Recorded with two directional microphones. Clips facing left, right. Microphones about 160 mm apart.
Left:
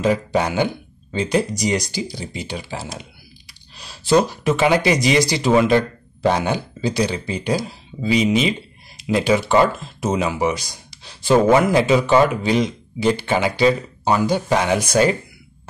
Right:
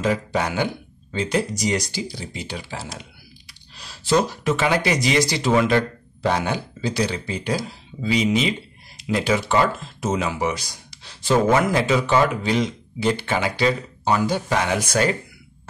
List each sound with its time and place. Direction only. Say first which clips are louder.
0.0 s speech: left 4 dB; 20° left (ahead or behind)